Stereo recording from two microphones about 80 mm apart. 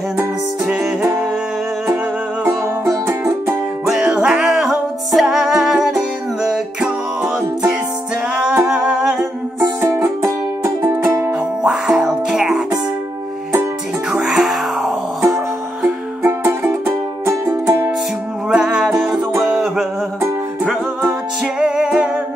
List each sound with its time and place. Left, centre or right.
2.8 s music: right
3.8 s music: centre
8.6 s humming: centre
9.6 s music: right
11.3 s music: centre
14.2 s music: centre
16.2 s music: right
18.5 s music: centre
21.5 s music: centre